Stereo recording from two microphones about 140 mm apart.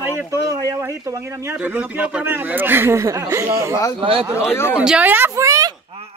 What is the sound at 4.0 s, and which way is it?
Speech, 45° right (ahead or behind).